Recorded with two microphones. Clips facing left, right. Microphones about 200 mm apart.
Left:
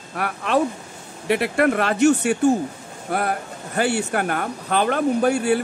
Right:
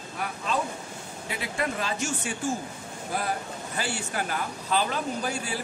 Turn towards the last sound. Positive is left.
turn(degrees=65)  # may be behind; listen again after turning